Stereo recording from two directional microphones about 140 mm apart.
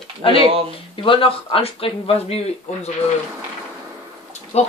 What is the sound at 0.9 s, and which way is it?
Speech, 40° left (ahead or behind).